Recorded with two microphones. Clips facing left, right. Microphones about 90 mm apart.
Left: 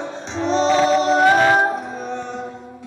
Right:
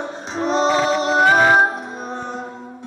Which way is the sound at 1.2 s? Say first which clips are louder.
Right 3 dB; 15° right (ahead or behind).